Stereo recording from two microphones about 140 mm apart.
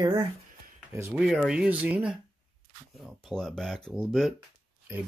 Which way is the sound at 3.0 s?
Centre (ahead or behind).